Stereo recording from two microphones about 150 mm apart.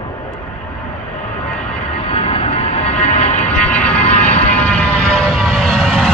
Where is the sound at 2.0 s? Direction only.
40° left (ahead or behind).